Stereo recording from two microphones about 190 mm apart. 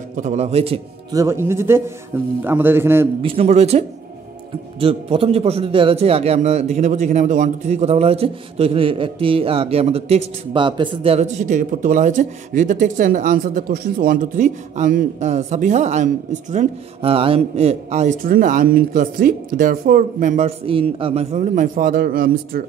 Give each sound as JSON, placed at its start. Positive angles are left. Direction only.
{"t": 0.1, "sound": "a man's voice", "side_deg": -35}
{"t": 1.1, "sound": "speech", "side_deg": -15}
{"t": 3.2, "sound": "a man's voice", "side_deg": -30}